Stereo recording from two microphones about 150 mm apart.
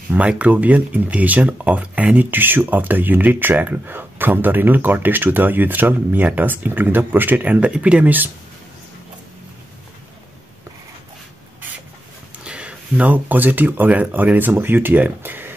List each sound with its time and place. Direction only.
0.1 s speech: 10° right (ahead or behind)
12.4 s speech: 5° right (ahead or behind)